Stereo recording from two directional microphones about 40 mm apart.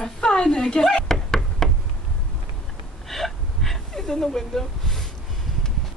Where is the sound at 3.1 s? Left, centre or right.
Centre.